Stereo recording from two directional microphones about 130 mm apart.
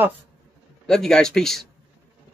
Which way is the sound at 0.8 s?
5° left (ahead or behind).